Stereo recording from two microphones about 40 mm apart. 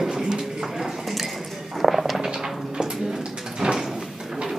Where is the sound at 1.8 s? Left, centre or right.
Centre.